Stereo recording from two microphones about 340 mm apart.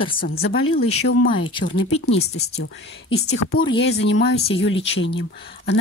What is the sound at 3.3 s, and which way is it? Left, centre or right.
Speech, left.